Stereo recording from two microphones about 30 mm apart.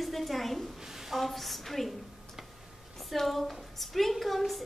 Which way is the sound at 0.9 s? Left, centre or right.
Centre.